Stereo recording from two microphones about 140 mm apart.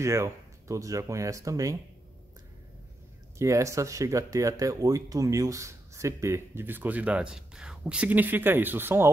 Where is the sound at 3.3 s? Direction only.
20° right (ahead or behind).